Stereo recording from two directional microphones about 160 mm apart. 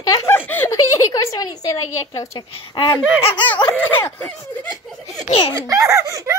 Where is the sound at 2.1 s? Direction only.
30° left (ahead or behind).